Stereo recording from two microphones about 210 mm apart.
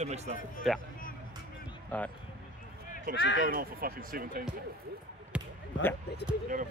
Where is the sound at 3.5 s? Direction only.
45° right (ahead or behind).